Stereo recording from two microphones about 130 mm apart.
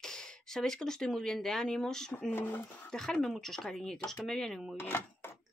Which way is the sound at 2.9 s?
5° left (ahead or behind).